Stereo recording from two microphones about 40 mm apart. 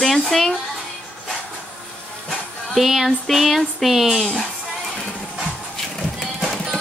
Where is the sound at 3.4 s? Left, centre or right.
Centre.